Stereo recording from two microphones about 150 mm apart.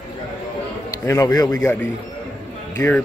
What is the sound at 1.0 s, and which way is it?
Speech, 20° left (ahead or behind).